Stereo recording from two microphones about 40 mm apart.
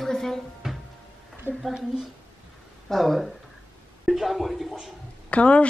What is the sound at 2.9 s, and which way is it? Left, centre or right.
Speech, centre.